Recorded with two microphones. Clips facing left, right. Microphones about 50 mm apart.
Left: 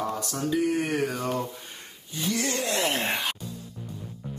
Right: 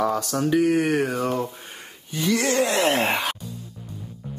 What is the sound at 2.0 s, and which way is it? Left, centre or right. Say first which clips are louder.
Speech: right 6 dB; right.